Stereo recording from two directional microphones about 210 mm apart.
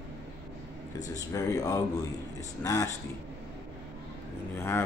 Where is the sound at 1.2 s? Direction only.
15° left (ahead or behind).